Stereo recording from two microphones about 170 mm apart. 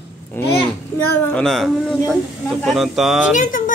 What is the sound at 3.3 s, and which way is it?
Speech, 50° left (ahead or behind).